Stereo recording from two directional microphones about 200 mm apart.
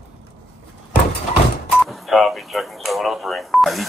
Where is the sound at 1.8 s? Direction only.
Centre (ahead or behind).